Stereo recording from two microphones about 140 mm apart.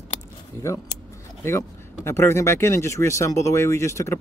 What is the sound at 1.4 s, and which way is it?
Speech, 20° left (ahead or behind).